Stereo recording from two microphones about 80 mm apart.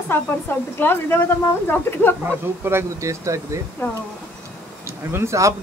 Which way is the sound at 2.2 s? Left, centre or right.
Right.